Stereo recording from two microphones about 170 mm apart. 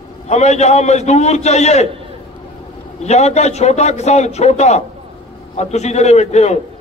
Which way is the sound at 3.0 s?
40° left (ahead or behind).